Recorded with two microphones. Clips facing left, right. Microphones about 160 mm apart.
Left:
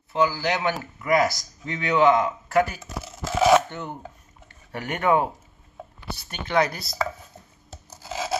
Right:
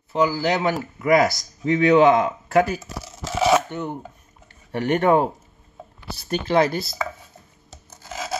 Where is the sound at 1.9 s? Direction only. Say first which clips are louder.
Right 2 dB; 25° right (ahead or behind).